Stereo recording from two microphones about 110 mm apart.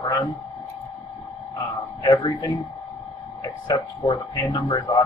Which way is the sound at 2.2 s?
45° left (ahead or behind).